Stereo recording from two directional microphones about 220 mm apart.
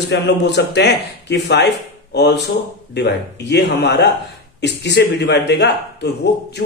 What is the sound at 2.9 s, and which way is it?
A man's voice, 50° left (ahead or behind).